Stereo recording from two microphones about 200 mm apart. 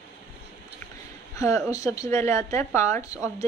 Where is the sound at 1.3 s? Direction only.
15° left (ahead or behind).